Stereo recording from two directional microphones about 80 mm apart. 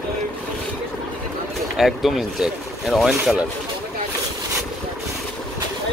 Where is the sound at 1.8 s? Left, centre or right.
Centre.